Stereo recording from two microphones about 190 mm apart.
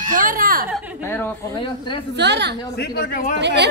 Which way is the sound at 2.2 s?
65° right (ahead or behind).